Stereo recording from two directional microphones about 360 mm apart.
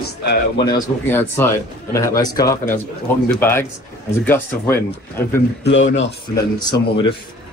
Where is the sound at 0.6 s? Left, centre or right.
Centre.